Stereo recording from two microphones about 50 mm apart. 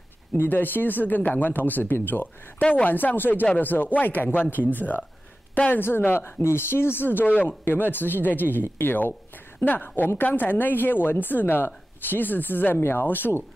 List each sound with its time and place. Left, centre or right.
0.4 s a woman's voice: left